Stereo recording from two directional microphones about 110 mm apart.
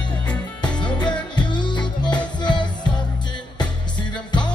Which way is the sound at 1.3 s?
45° left (ahead or behind).